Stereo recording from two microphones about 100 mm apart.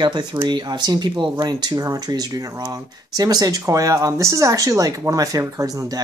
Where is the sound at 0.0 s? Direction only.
45° right (ahead or behind).